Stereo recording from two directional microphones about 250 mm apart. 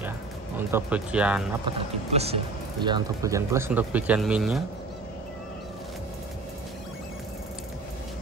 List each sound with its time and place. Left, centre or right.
0.6 s speech: centre
1.7 s speech: right; by 4.6 s centre